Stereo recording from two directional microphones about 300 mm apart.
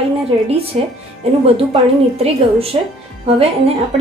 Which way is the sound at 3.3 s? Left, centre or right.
Centre.